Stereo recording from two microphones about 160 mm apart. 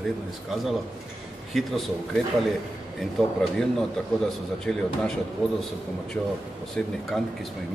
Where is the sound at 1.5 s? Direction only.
Centre (ahead or behind).